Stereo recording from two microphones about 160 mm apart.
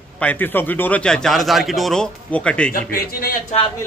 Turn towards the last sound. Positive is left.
turn(degrees=65)  # may be behind; listen again after turning